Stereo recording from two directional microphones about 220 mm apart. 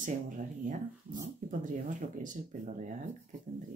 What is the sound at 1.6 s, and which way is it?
Speech, 35° right (ahead or behind).